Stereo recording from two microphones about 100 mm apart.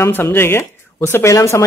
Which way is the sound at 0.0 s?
25° left (ahead or behind).